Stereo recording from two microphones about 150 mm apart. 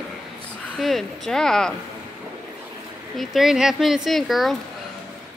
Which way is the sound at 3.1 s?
Centre (ahead or behind).